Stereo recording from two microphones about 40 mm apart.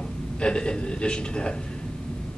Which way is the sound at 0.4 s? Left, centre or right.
Left.